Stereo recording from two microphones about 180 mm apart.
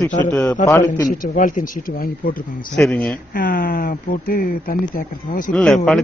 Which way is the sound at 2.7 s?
5° left (ahead or behind).